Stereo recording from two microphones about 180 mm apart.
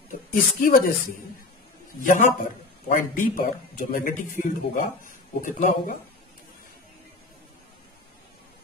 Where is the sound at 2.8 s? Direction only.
50° left (ahead or behind).